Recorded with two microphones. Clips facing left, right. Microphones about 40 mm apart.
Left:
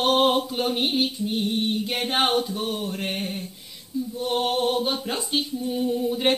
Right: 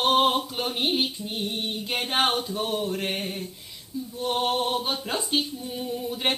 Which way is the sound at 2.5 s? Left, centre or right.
Centre.